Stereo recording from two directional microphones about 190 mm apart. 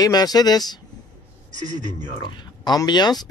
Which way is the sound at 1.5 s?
40° right (ahead or behind).